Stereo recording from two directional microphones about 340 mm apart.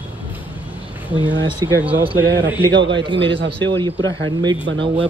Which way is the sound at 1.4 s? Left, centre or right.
Centre.